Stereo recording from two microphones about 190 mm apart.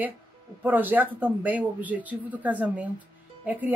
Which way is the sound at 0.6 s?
10° right (ahead or behind).